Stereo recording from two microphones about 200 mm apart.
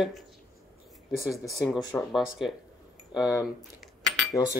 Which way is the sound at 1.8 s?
15° left (ahead or behind).